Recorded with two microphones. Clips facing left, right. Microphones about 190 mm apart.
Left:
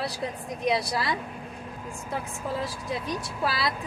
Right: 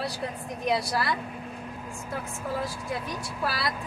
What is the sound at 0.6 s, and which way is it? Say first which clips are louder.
Speech: left 1 dB; 15° left (ahead or behind).